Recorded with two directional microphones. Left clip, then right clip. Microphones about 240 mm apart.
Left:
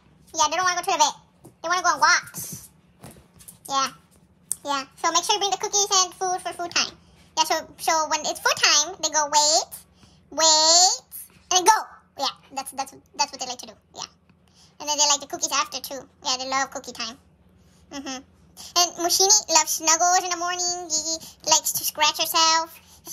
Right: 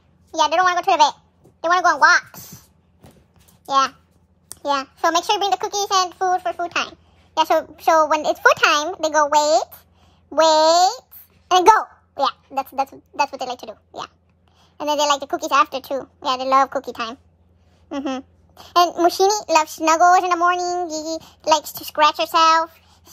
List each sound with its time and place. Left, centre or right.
0.3 s a child's voice: centre
3.6 s a child's voice: centre